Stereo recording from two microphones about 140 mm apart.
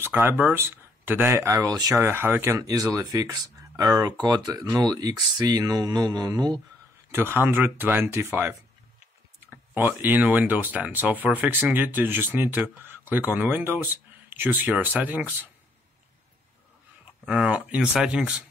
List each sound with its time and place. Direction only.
0.0 s speech: 15° right (ahead or behind)
7.1 s speech: 15° right (ahead or behind)
9.8 s speech: 15° right (ahead or behind)
17.2 s speech: 5° right (ahead or behind)